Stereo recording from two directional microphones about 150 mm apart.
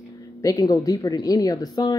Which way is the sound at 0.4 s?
25° left (ahead or behind).